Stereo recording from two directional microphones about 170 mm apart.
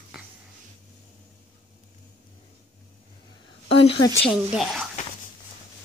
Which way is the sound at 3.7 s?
35° left (ahead or behind).